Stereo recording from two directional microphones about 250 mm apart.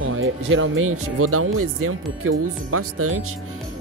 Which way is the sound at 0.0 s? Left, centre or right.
Right.